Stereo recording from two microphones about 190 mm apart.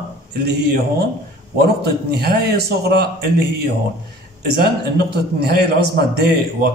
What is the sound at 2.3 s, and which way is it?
Speech, 55° right (ahead or behind).